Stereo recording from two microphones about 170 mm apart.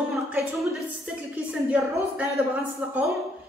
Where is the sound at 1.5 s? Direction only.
5° right (ahead or behind).